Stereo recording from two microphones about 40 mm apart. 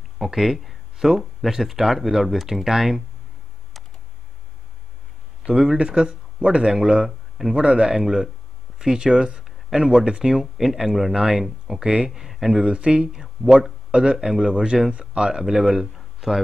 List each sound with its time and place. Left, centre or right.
0.2 s speech: centre
5.5 s speech: right
7.1 s speech: centre
7.5 s speech: right
8.0 s speech: centre
10.3 s speech: centre
12.6 s speech: right
13.1 s speech: centre